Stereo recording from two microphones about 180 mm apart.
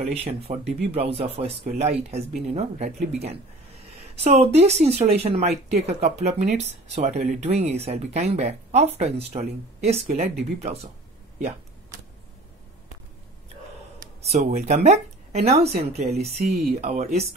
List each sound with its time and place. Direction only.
0.0 s speech: 35° right (ahead or behind)
14.3 s speech: 40° right (ahead or behind)